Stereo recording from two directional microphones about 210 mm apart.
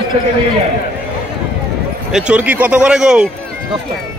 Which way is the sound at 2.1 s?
5° right (ahead or behind).